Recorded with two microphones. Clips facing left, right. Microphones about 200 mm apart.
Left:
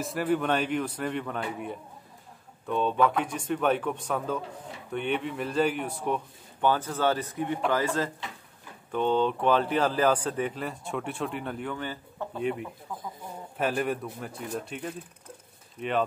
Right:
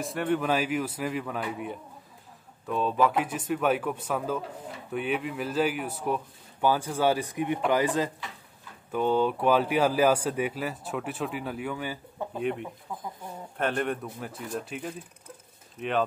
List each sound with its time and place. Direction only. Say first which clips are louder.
0.0 s speech: even; centre (ahead or behind)